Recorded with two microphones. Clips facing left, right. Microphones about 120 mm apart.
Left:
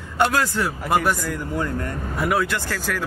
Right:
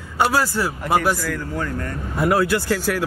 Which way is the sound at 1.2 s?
20° left (ahead or behind).